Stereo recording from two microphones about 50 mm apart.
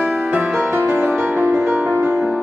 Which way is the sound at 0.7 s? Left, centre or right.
Right.